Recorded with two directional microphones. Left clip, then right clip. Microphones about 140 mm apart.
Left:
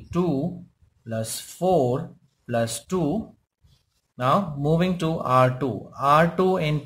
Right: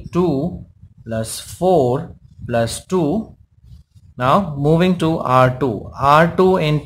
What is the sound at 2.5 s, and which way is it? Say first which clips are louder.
Speech: right 6 dB; 15° right (ahead or behind).